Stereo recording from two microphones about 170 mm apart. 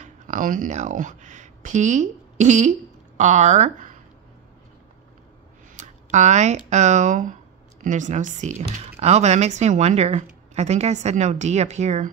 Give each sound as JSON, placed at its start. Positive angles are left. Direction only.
{"t": 0.0, "sound": "speech", "side_deg": -50}
{"t": 5.8, "sound": "a woman's voice", "side_deg": -45}